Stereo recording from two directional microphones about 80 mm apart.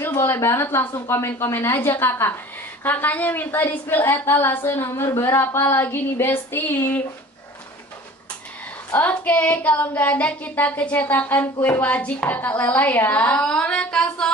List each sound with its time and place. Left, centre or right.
0.0 s a woman's voice: left
9.1 s a woman's voice: centre